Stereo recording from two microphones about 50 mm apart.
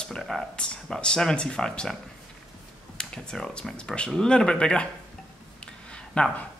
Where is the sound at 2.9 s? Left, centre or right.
Centre.